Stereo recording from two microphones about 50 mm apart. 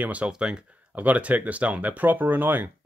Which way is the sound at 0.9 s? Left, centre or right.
Right.